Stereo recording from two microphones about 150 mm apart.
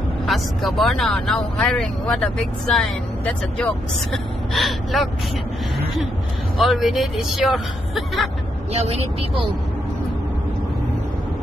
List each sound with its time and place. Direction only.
0.3 s speech: centre (ahead or behind)
6.6 s speech: centre (ahead or behind)
8.7 s speech: 40° right (ahead or behind)